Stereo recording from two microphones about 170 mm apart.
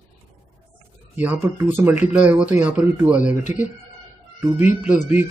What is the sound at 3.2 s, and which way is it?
Speech, 45° left (ahead or behind).